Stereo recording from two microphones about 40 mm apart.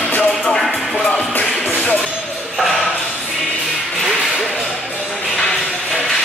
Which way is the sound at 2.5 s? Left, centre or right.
Centre.